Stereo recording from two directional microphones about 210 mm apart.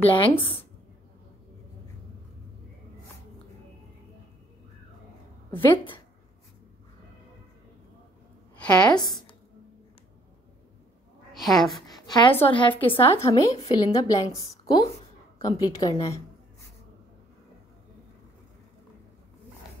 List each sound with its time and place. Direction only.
0.0 s a woman's voice: 25° left (ahead or behind)
5.5 s a woman's voice: 25° left (ahead or behind)
8.8 s a woman's voice: 20° left (ahead or behind)
11.3 s a woman's voice: centre (ahead or behind)
11.9 s a woman's voice: 20° left (ahead or behind)